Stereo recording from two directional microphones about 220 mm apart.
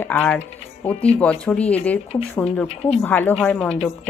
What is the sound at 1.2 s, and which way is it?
Speech, 5° left (ahead or behind).